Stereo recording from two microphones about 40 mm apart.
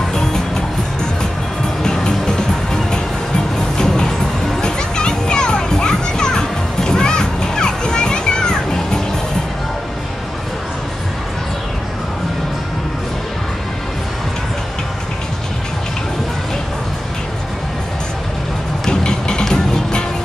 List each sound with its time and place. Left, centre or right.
0.1 s music: centre
1.8 s music: centre
18.9 s music: centre